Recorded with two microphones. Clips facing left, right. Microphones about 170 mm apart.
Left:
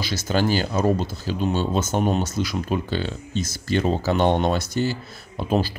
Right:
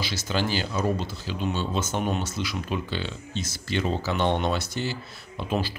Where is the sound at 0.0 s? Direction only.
45° left (ahead or behind).